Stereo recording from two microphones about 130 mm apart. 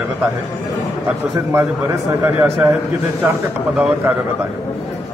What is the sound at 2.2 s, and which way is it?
Speech, 15° right (ahead or behind).